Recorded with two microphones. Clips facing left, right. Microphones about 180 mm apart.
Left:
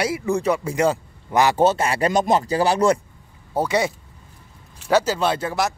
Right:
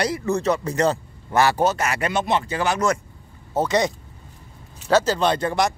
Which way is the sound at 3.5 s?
10° left (ahead or behind).